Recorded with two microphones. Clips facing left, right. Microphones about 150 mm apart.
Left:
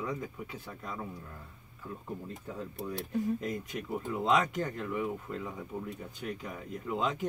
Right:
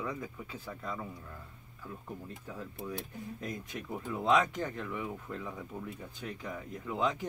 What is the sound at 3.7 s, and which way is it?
Speech, 15° left (ahead or behind).